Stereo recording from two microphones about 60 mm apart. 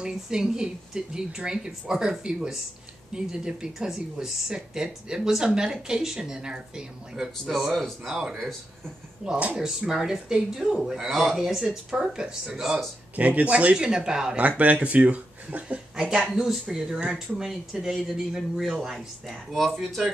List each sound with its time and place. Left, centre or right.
0.0 s speech: centre
13.1 s speech: right
14.6 s speech: right
16.0 s speech: centre